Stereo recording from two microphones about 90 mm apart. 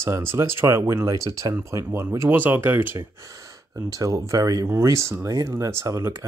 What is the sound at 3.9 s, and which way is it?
Speech, 40° right (ahead or behind).